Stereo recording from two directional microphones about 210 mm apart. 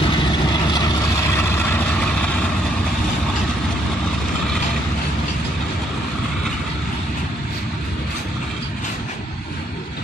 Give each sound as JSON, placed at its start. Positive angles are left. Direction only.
{"t": 0.0, "sound": "vehicle", "side_deg": 20}